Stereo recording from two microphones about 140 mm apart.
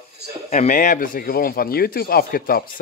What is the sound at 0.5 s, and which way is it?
Speech, 60° left (ahead or behind).